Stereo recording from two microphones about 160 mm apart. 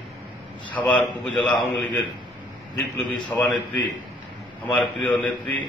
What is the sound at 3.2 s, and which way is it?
A man's voice, 10° left (ahead or behind).